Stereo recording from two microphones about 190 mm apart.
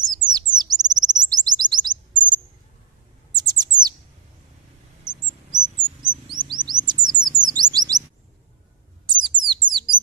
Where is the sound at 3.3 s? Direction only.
20° right (ahead or behind).